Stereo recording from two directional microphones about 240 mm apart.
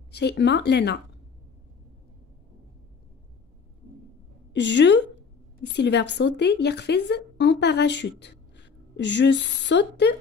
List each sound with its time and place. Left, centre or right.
0.1 s speech: left
4.6 s speech: left